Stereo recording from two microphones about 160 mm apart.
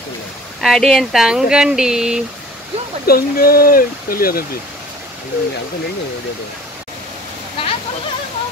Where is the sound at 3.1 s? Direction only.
65° left (ahead or behind).